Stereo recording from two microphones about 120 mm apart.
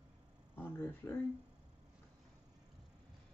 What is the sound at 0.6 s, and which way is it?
Speech, 20° left (ahead or behind).